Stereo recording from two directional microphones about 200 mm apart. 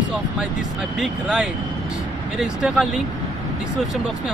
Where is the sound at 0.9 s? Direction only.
Centre (ahead or behind).